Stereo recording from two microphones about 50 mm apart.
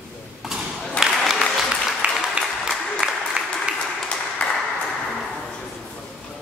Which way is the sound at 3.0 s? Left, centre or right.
Centre.